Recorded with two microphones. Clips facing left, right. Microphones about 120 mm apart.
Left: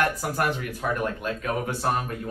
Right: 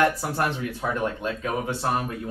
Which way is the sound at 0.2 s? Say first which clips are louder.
Even; 25° right (ahead or behind).